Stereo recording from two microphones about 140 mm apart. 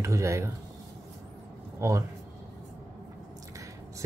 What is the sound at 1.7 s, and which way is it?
Speech, 20° right (ahead or behind).